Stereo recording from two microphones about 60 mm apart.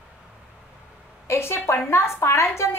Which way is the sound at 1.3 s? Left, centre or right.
Left.